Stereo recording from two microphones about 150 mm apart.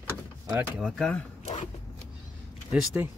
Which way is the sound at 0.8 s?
5° left (ahead or behind).